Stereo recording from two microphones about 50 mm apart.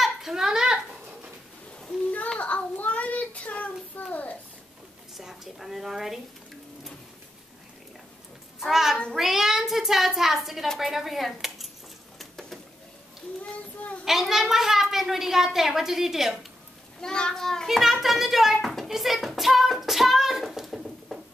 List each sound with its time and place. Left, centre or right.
0.0 s a sound: centre
2.3 s child singing: left
5.1 s a child's voice: centre
8.5 s a child's voice: centre
12.2 s a sound: centre
14.3 s a child's voice: centre
17.0 s a child's voice: centre
17.6 s a child's voice: centre
18.0 s a sound: centre